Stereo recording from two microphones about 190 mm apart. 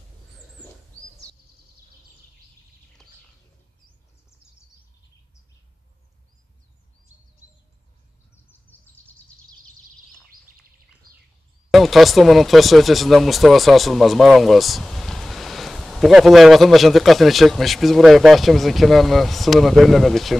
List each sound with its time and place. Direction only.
3.0 s bird: centre (ahead or behind)
8.7 s bird: 10° left (ahead or behind)
11.7 s speech: centre (ahead or behind)